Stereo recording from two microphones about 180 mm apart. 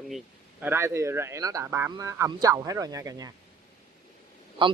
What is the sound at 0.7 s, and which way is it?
A man's voice, 15° right (ahead or behind).